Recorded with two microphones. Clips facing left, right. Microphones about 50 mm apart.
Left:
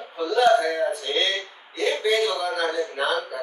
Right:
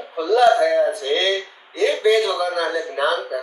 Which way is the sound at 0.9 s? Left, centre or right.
Right.